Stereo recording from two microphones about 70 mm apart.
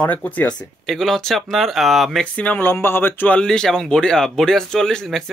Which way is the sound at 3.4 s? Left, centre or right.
Centre.